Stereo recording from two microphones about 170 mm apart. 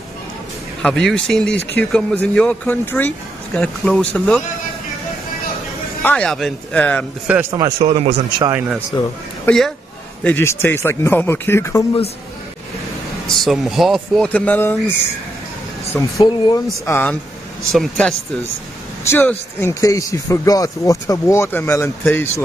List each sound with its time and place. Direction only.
0.8 s speech: 5° left (ahead or behind)
6.0 s speech: 5° left (ahead or behind)
7.3 s speech: 5° right (ahead or behind)
7.8 s a man's voice: 35° right (ahead or behind)
8.5 s speech: 10° right (ahead or behind)
8.9 s speech: 25° left (ahead or behind)
9.5 s speech: 10° left (ahead or behind)
13.3 s speech: centre (ahead or behind)
16.0 s speech: 10° left (ahead or behind)
16.3 s speech: 25° left (ahead or behind)
16.8 s speech: 10° left (ahead or behind)